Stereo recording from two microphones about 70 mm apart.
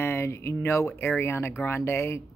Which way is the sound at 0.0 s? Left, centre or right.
Left.